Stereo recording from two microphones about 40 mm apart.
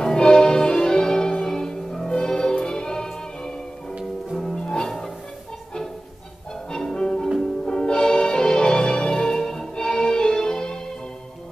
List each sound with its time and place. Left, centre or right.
0.0 s change ringing: centre
1.5 s music: centre
6.7 s music: centre